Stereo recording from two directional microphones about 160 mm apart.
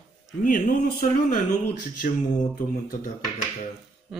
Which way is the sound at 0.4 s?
60° left (ahead or behind).